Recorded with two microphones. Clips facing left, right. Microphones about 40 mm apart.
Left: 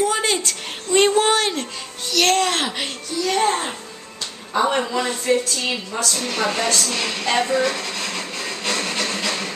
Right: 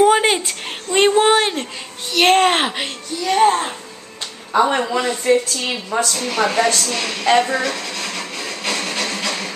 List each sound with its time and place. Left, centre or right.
0.0 s a sound: right
0.4 s a sound: centre
2.2 s a child's voice: right
2.8 s a child's voice: centre; by 6.1 s right
6.3 s speech: centre
6.8 s a woman's voice: centre
7.3 s speech: centre
7.7 s a sound: centre
8.6 s music: centre
9.0 s music: centre